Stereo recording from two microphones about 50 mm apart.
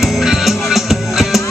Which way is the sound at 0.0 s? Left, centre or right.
Centre.